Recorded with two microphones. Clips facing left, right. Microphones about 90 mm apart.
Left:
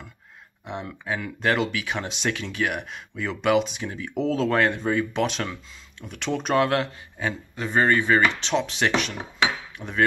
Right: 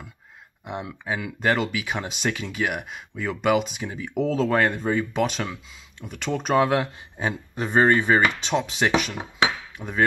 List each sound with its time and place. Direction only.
0.7 s speech: 5° right (ahead or behind)
7.2 s speech: 20° right (ahead or behind)
8.4 s speech: 5° right (ahead or behind)